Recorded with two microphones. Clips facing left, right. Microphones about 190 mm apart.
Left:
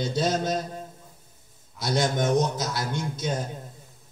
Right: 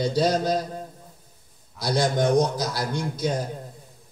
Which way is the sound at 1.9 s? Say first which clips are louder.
Right 2 dB; 20° left (ahead or behind).